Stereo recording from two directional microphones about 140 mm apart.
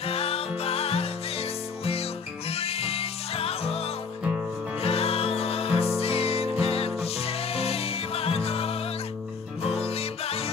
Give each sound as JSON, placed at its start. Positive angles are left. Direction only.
{"t": 0.0, "sound": "music", "side_deg": 45}
{"t": 2.5, "sound": "music", "side_deg": 45}
{"t": 4.8, "sound": "music", "side_deg": 45}